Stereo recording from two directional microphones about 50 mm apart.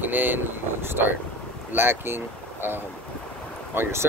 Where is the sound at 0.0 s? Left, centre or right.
Right.